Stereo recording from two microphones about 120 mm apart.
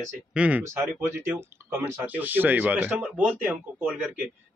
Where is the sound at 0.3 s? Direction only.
10° right (ahead or behind).